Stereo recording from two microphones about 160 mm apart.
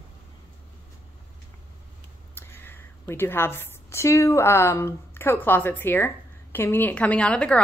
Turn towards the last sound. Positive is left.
turn(degrees=5)  # may be behind; listen again after turning